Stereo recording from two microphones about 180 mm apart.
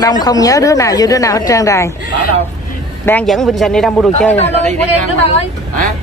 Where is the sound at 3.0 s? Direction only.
5° left (ahead or behind).